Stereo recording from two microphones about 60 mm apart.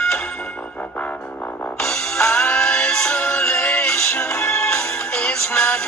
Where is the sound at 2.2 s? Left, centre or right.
Centre.